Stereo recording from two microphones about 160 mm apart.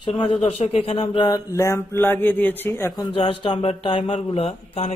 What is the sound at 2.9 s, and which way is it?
Speech, 30° left (ahead or behind).